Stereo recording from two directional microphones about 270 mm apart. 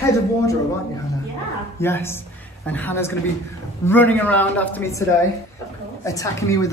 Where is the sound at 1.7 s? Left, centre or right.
Centre.